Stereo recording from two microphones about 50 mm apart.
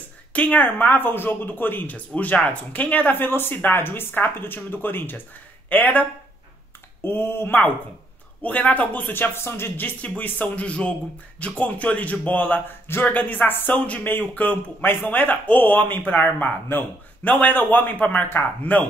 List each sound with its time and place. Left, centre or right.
0.3 s speech: left
7.0 s speech: left
8.4 s speech: left
9.1 s speech: left
9.8 s speech: left
12.6 s speech: left
13.0 s speech: left
14.0 s speech: left